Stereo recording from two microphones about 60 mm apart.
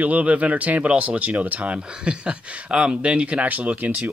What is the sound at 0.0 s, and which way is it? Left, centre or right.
Speech, right.